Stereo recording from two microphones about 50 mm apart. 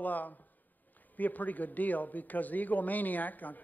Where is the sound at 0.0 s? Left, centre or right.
Left.